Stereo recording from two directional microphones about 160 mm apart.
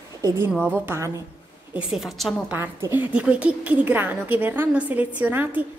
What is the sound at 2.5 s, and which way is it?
A woman's voice, 10° right (ahead or behind).